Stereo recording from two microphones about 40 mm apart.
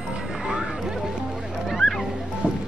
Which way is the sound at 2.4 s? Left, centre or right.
Right.